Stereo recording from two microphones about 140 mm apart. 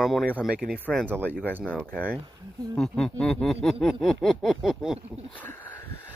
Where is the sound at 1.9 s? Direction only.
10° left (ahead or behind).